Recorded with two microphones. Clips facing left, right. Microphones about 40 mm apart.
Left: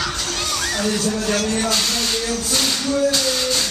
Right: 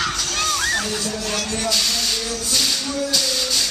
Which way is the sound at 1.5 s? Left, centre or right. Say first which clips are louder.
Left 2 dB; left.